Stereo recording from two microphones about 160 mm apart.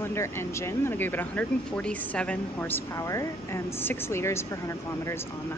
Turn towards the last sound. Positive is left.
turn(degrees=15)  # may be behind; listen again after turning